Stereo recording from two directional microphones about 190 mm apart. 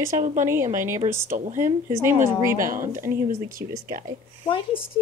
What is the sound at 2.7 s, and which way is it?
Speech, 45° right (ahead or behind).